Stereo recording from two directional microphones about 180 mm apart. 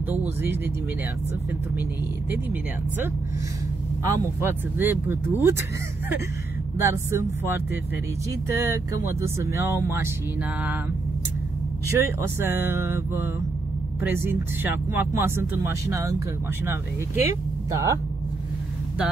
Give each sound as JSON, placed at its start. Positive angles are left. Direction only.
{"t": 0.1, "sound": "speech", "side_deg": -10}
{"t": 4.0, "sound": "speech", "side_deg": -15}
{"t": 6.8, "sound": "speech", "side_deg": -15}
{"t": 11.9, "sound": "speech", "side_deg": -15}
{"t": 17.6, "sound": "speech", "side_deg": -20}